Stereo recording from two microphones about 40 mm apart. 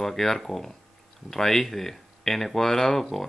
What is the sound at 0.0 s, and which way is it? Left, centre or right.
Speech, centre.